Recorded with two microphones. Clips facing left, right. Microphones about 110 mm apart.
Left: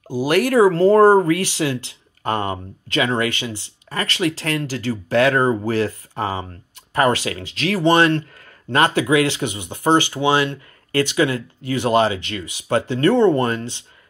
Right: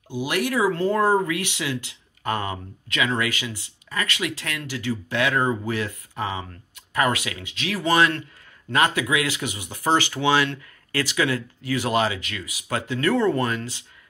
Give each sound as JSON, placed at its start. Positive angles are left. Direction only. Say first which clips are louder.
{"t": 0.1, "sound": "speech", "louder": "left 8 dB", "side_deg": 40}